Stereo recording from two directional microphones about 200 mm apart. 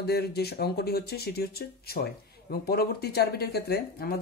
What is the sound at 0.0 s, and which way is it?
Speech, 55° left (ahead or behind).